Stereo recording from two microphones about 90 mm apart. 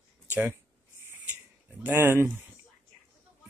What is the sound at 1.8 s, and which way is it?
Speech, 25° right (ahead or behind).